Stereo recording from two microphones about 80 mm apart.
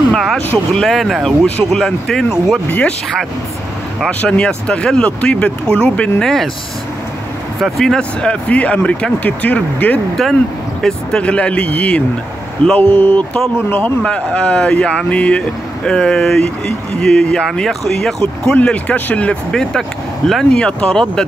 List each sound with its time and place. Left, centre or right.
0.1 s vehicle: centre
0.7 s speech: centre
4.2 s speech: centre
6.2 s speech: centre
7.6 s speech: centre; by 9.9 s left
10.8 s a man's voice: centre
18.6 s speech: centre